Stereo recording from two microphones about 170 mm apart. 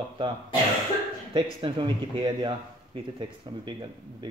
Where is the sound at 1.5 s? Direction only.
30° right (ahead or behind).